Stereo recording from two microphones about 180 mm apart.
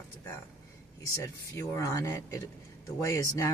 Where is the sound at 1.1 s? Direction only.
15° left (ahead or behind).